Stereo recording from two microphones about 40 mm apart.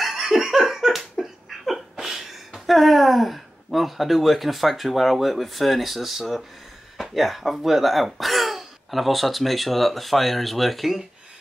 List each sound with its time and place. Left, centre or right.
0.0 s laughter: centre
2.0 s a sound: centre
2.6 s speech: centre